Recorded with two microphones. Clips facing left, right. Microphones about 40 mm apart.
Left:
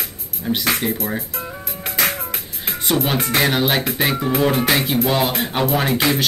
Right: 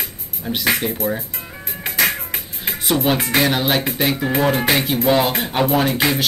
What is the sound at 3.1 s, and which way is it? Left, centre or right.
Music, centre.